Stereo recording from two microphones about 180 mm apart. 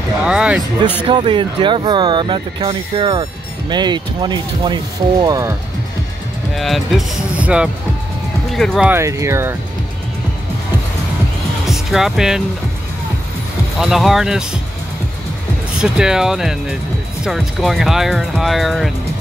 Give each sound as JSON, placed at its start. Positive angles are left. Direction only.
{"t": 0.2, "sound": "speech", "side_deg": -5}
{"t": 1.0, "sound": "speech", "side_deg": -30}
{"t": 6.5, "sound": "speech", "side_deg": 0}
{"t": 8.9, "sound": "speech", "side_deg": -15}
{"t": 11.6, "sound": "speech", "side_deg": 0}
{"t": 13.7, "sound": "speech", "side_deg": 0}
{"t": 15.8, "sound": "speech", "side_deg": -5}